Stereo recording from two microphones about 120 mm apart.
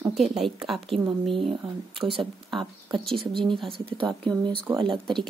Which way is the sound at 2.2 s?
Centre (ahead or behind).